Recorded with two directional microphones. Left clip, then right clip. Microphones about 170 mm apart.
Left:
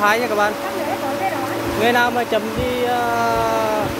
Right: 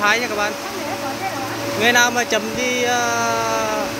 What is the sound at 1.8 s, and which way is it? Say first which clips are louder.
Speech: right 1 dB; centre (ahead or behind).